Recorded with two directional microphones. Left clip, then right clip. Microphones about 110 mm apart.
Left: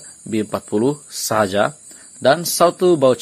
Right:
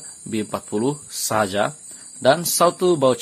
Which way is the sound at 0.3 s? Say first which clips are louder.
Left 4 dB; 30° left (ahead or behind).